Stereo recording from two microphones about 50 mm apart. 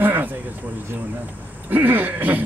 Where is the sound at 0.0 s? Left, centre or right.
Right.